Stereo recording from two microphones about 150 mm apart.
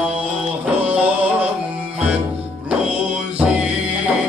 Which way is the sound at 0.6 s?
10° right (ahead or behind).